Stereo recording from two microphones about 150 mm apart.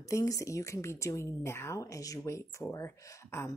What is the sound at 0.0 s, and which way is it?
Speech, 20° left (ahead or behind).